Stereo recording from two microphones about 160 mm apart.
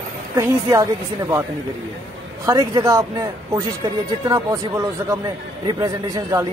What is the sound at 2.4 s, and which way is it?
Speech, 25° right (ahead or behind).